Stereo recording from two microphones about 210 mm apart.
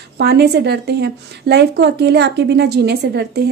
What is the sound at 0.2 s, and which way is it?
A woman's voice, 50° right (ahead or behind).